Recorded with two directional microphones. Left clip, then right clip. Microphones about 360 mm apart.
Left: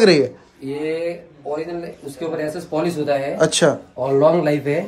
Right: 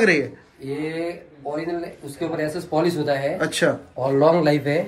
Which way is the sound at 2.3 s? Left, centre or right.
Centre.